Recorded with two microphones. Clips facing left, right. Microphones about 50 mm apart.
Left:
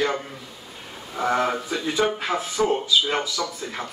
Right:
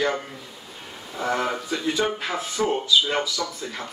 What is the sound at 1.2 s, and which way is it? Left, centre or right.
Speech, left.